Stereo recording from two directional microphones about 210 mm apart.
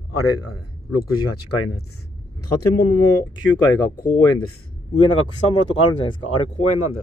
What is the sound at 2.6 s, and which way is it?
Speech, 90° left.